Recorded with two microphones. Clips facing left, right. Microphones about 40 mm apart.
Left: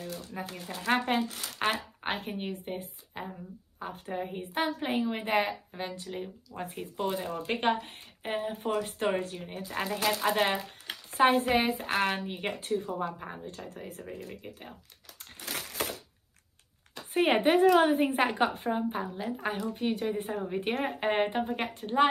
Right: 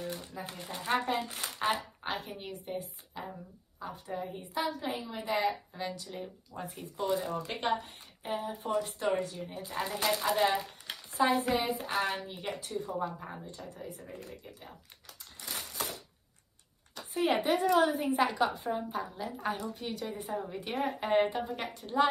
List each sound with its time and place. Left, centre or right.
0.0 s a sound: right
0.8 s a woman's voice: left
5.7 s a woman's voice: left
9.8 s speech: centre
11.1 s speech: left
13.2 s speech: left
15.4 s crushing: left
17.1 s a woman's voice: left
18.7 s a woman's voice: left